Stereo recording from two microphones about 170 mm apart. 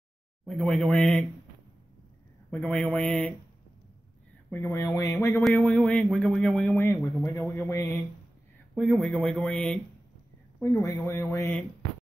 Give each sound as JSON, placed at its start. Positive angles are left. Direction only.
{"t": 0.5, "sound": "speech", "side_deg": 5}
{"t": 2.5, "sound": "speech", "side_deg": 10}
{"t": 4.5, "sound": "speech", "side_deg": 15}
{"t": 8.7, "sound": "speech", "side_deg": 0}
{"t": 10.6, "sound": "speech", "side_deg": 20}